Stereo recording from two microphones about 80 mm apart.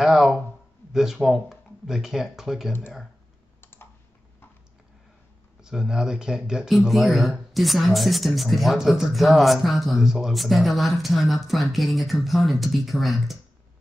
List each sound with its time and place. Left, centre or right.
0.0 s a sound: centre
0.9 s speech: centre
3.6 s computer keyboard: left
5.6 s speech: centre